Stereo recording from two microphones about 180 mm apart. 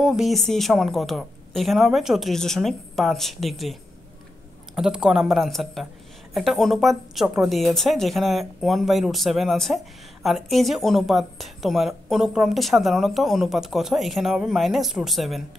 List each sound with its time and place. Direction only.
0.0 s speech: centre (ahead or behind)
4.7 s speech: 5° right (ahead or behind)